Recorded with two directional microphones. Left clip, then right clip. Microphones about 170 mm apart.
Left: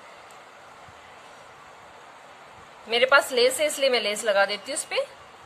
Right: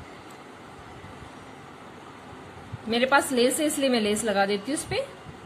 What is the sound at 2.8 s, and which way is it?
A woman's voice, 35° left (ahead or behind).